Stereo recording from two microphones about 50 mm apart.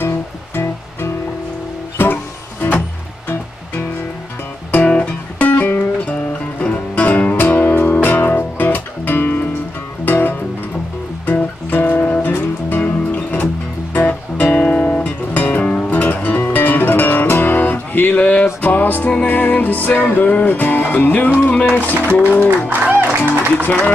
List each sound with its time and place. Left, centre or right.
4.8 s music: left
12.7 s music: left
22.7 s music: right
23.5 s music: left